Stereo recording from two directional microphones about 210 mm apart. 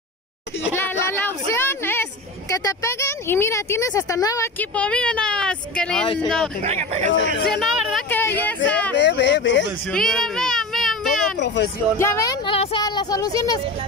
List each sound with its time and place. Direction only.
0.7 s a sound: 10° left (ahead or behind)
2.5 s speech: 15° left (ahead or behind)
6.6 s speech: 30° right (ahead or behind)
7.5 s speech: centre (ahead or behind)
8.9 s speech: 55° left (ahead or behind)
9.8 s a sound: 5° left (ahead or behind)
11.3 s speech: 55° left (ahead or behind)
12.0 s speech: 15° left (ahead or behind)